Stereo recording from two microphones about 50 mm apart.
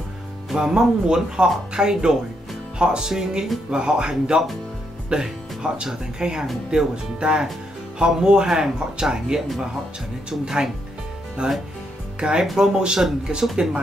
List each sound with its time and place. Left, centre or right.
0.5 s speech: centre
10.4 s speech: centre